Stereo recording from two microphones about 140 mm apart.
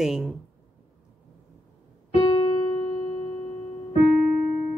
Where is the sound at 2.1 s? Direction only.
35° left (ahead or behind).